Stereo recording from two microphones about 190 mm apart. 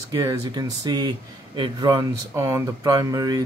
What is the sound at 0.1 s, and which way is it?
Speech, 20° right (ahead or behind).